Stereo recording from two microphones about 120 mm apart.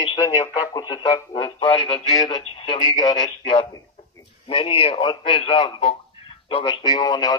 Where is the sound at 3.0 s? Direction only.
30° left (ahead or behind).